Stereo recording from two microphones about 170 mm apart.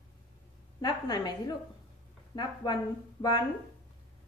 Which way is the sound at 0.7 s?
25° left (ahead or behind).